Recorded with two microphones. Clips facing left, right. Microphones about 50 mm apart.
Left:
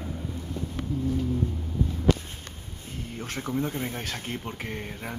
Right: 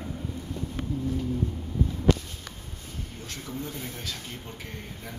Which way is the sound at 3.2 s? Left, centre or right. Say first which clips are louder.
Left 8 dB; left.